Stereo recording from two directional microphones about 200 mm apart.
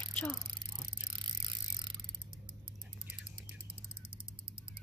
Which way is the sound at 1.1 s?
25° right (ahead or behind).